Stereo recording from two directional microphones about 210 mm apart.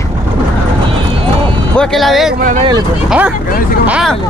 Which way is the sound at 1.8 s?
Centre (ahead or behind).